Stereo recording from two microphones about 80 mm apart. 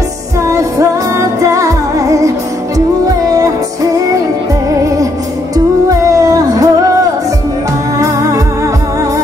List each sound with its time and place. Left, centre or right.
0.5 s music: right